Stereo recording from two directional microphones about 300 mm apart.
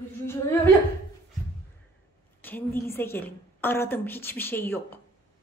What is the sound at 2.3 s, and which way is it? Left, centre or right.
A woman's voice, centre.